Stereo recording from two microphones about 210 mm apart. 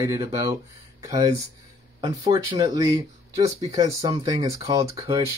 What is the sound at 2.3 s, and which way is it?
Speech, 20° right (ahead or behind).